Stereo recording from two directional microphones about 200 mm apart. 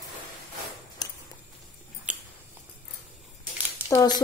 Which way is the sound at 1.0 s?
20° left (ahead or behind).